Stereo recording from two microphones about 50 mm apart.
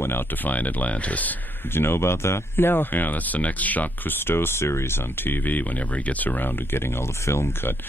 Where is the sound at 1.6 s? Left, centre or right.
Left.